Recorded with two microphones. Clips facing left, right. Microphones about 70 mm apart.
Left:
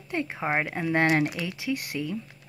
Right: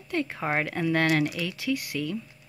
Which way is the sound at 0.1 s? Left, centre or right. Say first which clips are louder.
Even; centre.